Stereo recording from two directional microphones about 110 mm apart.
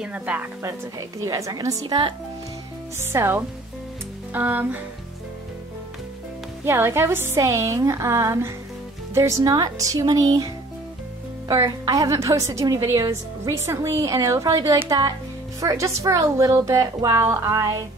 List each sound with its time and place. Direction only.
0.0 s a woman's voice: 15° right (ahead or behind)
0.6 s a woman's voice: 25° right (ahead or behind)
3.0 s a woman's voice: 20° right (ahead or behind)
6.6 s a woman's voice: 25° right (ahead or behind)
11.4 s a woman's voice: 30° right (ahead or behind)